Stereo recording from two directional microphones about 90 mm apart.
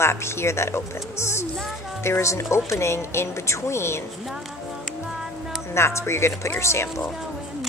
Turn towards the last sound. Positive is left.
turn(degrees=30)  # may be behind; listen again after turning